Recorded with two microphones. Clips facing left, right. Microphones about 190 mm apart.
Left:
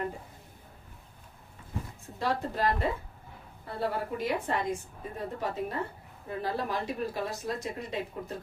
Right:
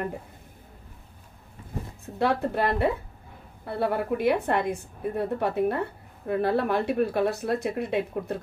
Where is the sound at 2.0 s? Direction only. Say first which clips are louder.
Right 7 dB; 60° right (ahead or behind).